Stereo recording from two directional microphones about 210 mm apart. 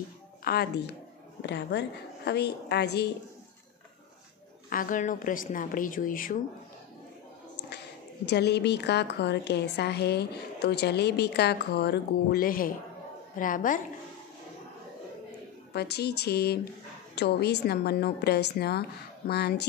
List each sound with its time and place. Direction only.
0.4 s a woman's voice: 45° left (ahead or behind)
4.6 s a woman's voice: 40° left (ahead or behind)
8.3 s a woman's voice: 55° left (ahead or behind)
15.7 s a woman's voice: 50° left (ahead or behind)